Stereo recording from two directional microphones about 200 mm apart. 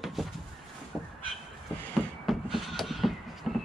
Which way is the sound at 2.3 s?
Centre (ahead or behind).